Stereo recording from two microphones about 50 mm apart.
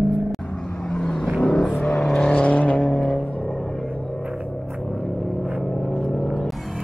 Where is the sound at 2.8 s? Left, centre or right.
Centre.